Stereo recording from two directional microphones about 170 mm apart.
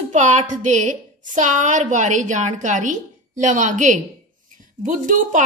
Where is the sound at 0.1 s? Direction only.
45° right (ahead or behind).